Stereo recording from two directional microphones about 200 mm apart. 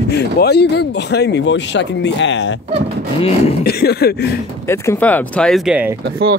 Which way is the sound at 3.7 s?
55° left (ahead or behind).